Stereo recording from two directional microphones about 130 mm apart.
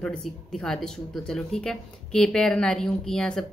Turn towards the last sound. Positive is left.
turn(degrees=5)  # may be behind; listen again after turning